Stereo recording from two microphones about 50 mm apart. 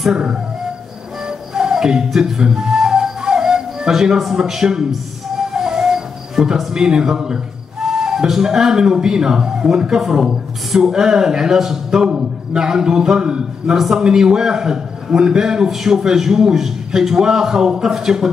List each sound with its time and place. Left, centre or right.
0.1 s a man's voice: centre
1.5 s flute: centre
5.5 s music: centre
7.8 s a man's voice: centre